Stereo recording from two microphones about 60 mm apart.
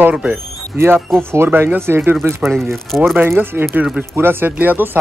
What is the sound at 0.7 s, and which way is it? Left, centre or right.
Speech, right.